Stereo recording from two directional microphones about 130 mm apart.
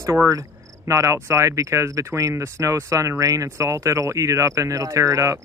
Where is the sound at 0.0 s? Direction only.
25° right (ahead or behind).